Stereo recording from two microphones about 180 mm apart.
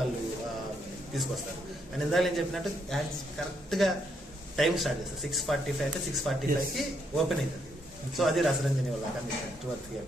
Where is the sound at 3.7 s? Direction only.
Centre (ahead or behind).